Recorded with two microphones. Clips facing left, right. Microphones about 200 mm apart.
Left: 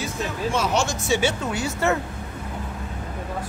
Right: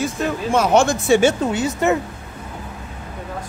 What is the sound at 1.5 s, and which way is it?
Speech, 20° right (ahead or behind).